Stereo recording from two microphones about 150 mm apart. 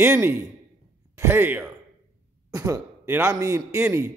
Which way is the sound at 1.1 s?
15° right (ahead or behind).